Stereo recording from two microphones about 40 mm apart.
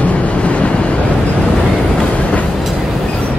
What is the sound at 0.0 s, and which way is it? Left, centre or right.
Vehicle, left.